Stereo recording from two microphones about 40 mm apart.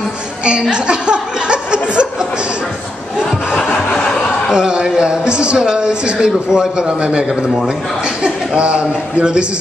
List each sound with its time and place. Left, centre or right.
0.5 s speech: right
4.5 s a man's voice: centre